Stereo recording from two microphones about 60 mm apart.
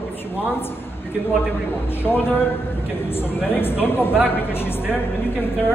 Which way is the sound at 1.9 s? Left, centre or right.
Left.